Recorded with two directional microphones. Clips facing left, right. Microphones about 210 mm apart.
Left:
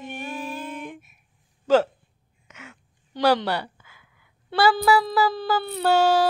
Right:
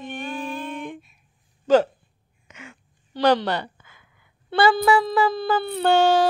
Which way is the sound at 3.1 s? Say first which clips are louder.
Right 1 dB; 10° left (ahead or behind).